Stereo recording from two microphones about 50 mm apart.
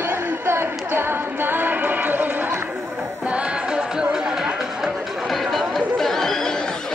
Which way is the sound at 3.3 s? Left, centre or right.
Centre.